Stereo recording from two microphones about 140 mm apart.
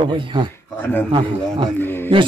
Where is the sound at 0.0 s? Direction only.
35° right (ahead or behind).